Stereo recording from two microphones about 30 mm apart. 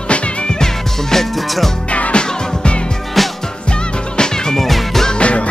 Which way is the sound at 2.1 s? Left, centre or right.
Left.